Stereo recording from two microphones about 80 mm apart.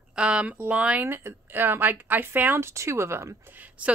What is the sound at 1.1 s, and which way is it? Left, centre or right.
A woman's voice, right.